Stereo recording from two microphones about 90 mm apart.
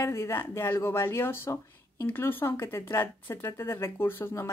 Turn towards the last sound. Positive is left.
turn(degrees=30)  # may be behind; listen again after turning